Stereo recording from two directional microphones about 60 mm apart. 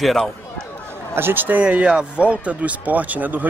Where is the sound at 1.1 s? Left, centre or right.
Right.